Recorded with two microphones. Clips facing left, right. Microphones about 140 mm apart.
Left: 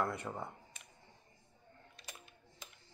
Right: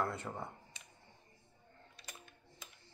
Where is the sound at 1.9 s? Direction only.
Centre (ahead or behind).